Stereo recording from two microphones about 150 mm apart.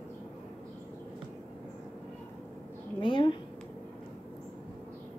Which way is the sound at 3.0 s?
35° left (ahead or behind).